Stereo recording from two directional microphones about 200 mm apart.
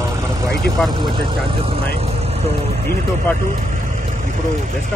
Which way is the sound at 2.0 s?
30° right (ahead or behind).